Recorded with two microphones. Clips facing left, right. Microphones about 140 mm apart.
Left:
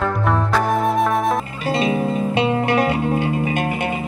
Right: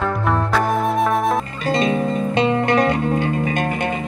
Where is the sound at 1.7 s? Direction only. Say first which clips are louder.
Right 1 dB; 10° left (ahead or behind).